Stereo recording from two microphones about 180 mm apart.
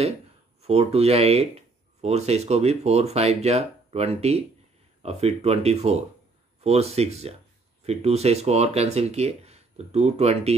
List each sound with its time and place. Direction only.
0.6 s speech: 35° right (ahead or behind)